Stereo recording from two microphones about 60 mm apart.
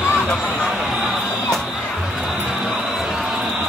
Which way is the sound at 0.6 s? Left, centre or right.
Centre.